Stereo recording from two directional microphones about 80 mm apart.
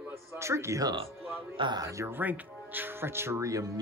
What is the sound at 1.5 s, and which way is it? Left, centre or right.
Speech, right.